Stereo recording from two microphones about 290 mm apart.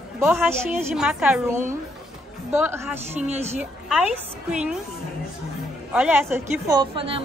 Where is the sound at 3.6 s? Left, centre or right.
Centre.